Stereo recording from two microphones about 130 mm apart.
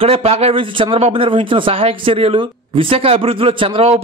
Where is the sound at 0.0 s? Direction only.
50° right (ahead or behind).